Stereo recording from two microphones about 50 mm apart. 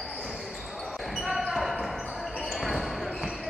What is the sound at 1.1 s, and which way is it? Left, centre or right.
Basketball bounce, centre.